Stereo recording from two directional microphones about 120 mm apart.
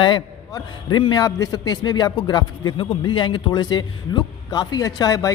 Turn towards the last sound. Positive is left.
turn(degrees=30)  # may be behind; listen again after turning